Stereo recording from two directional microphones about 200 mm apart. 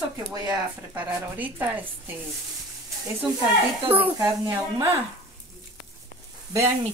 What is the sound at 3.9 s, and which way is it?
Speech, 10° right (ahead or behind).